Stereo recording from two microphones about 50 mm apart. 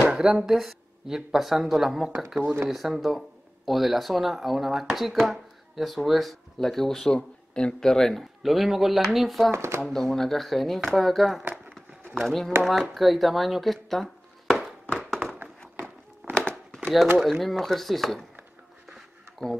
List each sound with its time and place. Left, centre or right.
0.2 s speech: centre
9.5 s speech: right
9.8 s speech: centre
14.9 s a sound: centre
16.2 s crumpling: right
17.2 s speech: centre